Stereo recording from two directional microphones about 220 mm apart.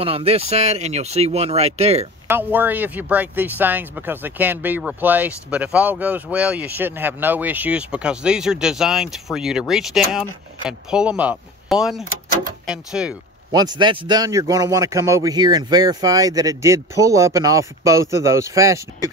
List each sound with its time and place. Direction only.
0.0 s speech: 25° right (ahead or behind)
2.2 s speech: 10° right (ahead or behind)
13.5 s speech: 20° right (ahead or behind)